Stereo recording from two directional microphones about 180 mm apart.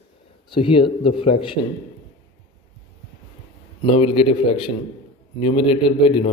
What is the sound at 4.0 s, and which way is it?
A man's voice, 30° left (ahead or behind).